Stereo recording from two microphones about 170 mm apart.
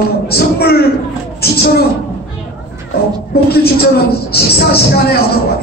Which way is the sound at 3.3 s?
65° left (ahead or behind).